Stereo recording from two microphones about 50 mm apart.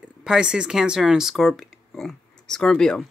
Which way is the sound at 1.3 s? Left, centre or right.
Centre.